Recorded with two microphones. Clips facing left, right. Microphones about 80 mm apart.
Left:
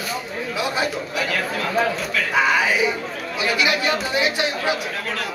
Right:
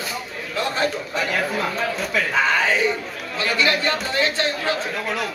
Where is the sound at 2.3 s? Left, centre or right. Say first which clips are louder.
Left 2 dB; centre.